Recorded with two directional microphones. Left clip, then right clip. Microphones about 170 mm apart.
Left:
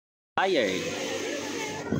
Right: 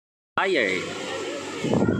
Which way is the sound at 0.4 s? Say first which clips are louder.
Right 2 dB; 10° left (ahead or behind).